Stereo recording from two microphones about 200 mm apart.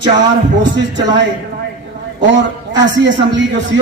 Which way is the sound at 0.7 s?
65° right (ahead or behind).